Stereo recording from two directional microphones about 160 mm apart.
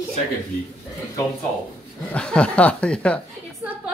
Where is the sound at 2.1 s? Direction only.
5° left (ahead or behind).